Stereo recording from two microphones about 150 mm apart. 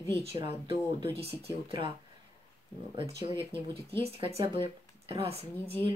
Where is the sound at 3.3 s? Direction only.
35° right (ahead or behind).